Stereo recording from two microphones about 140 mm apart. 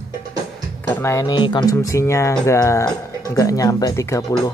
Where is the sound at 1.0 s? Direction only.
20° left (ahead or behind).